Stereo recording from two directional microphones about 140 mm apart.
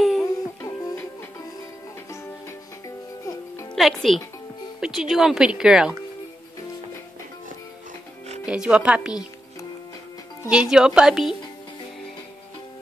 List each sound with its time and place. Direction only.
0.2 s music: 25° left (ahead or behind)
3.7 s speech: centre (ahead or behind)
8.5 s speech: 5° right (ahead or behind)
10.5 s speech: 5° right (ahead or behind)